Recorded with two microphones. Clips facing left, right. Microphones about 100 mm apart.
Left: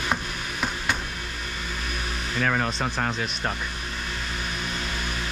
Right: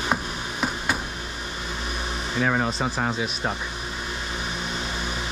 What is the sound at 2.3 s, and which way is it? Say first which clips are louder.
Speech: right 2 dB; 10° right (ahead or behind).